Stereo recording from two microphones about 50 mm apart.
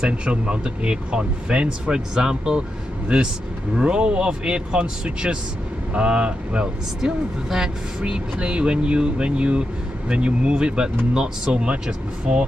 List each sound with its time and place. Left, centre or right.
0.0 s speech: right